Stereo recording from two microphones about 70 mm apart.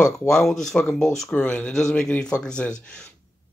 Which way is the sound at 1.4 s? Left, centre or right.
Centre.